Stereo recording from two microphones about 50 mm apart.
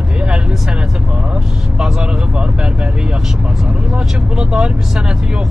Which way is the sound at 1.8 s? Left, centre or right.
Centre.